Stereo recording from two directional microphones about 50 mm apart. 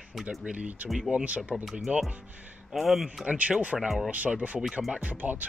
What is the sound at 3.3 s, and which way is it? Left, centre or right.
Speech, right.